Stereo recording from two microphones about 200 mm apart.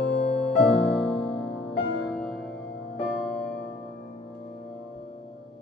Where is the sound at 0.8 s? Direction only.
5° left (ahead or behind).